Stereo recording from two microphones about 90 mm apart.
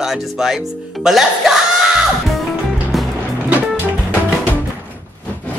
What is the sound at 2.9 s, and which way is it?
Music, centre (ahead or behind).